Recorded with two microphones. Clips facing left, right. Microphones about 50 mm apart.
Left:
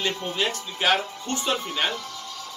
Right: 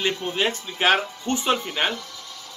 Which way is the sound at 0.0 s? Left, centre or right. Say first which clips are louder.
Right 3 dB; right.